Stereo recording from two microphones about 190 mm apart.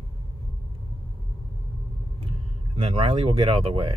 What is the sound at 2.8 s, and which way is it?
Speech, 35° right (ahead or behind).